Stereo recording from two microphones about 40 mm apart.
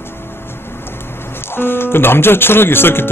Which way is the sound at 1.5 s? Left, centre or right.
Left.